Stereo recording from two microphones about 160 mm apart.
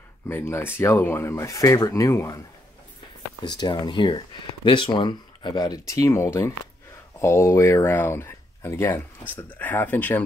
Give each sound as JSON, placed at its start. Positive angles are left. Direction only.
{"t": 0.3, "sound": "speech", "side_deg": 15}
{"t": 3.4, "sound": "speech", "side_deg": 25}